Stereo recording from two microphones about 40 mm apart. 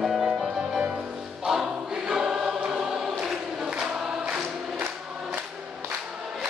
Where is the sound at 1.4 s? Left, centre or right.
Centre.